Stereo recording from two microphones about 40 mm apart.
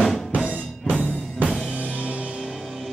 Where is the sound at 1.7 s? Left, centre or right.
Right.